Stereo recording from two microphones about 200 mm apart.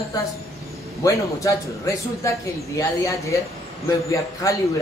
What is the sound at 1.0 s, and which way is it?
A man's voice, 15° left (ahead or behind).